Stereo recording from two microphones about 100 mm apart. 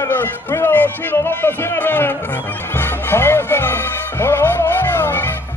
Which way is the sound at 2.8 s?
25° left (ahead or behind).